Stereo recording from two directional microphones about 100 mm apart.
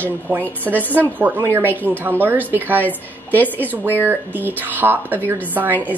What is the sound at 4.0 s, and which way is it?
Speech, 20° right (ahead or behind).